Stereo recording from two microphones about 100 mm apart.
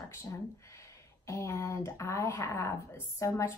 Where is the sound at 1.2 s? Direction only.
30° left (ahead or behind).